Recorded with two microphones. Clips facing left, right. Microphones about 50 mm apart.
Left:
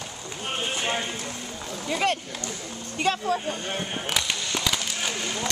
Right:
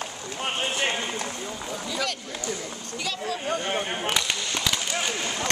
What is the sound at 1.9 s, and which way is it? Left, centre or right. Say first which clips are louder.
Speech: left 7 dB; left.